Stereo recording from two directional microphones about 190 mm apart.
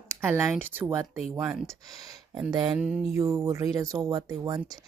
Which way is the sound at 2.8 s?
5° right (ahead or behind).